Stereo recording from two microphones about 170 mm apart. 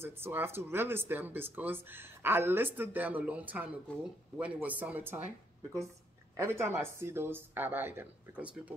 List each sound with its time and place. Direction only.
0.0 s speech: 15° right (ahead or behind)
6.3 s speech: 15° right (ahead or behind)